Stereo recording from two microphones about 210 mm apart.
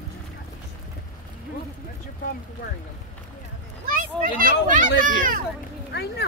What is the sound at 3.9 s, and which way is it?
A child's voice, 40° right (ahead or behind).